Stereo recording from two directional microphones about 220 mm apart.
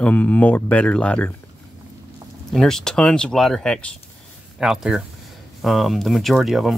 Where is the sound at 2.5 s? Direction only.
Centre (ahead or behind).